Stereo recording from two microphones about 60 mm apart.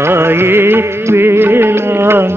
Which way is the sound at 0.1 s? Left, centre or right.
Right.